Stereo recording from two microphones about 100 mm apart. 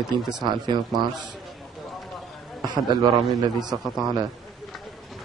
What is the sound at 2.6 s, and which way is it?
A man's voice, 45° right (ahead or behind).